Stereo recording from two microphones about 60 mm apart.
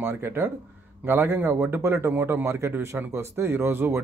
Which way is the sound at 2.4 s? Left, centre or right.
Right.